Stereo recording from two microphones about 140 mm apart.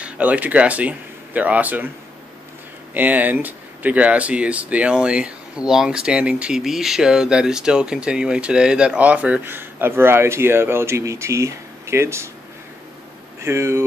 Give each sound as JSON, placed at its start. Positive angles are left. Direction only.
{"t": 0.0, "sound": "speech", "side_deg": -10}
{"t": 2.9, "sound": "speech", "side_deg": -10}
{"t": 13.4, "sound": "speech", "side_deg": -20}